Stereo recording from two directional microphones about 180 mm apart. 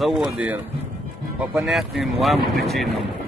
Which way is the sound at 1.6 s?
Centre (ahead or behind).